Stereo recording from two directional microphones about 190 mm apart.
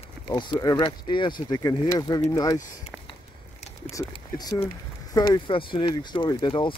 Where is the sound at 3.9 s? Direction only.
20° left (ahead or behind).